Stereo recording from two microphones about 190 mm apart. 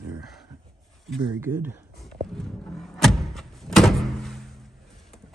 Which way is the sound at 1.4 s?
10° right (ahead or behind).